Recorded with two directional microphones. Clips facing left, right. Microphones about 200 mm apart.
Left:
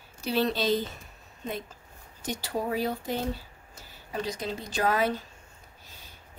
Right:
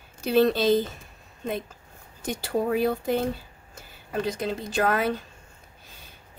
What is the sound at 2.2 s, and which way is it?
Speech, 55° right (ahead or behind).